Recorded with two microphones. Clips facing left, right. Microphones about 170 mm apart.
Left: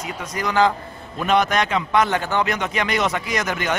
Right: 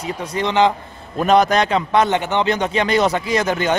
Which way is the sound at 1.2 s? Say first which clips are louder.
Right 5 dB; 35° right (ahead or behind).